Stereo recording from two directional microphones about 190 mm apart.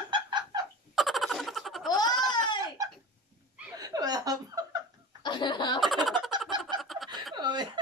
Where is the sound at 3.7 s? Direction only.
20° right (ahead or behind).